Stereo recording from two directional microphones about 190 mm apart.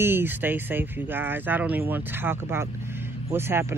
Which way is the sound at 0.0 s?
10° right (ahead or behind).